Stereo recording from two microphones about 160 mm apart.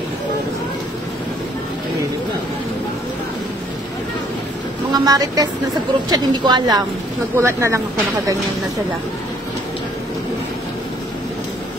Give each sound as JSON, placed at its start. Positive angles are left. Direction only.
{"t": 4.9, "sound": "speech", "side_deg": -25}
{"t": 7.3, "sound": "speech", "side_deg": -15}